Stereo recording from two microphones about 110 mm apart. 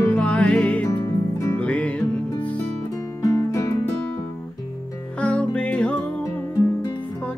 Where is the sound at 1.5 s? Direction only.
10° left (ahead or behind).